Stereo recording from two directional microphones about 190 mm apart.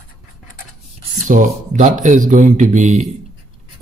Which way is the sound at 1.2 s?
45° right (ahead or behind).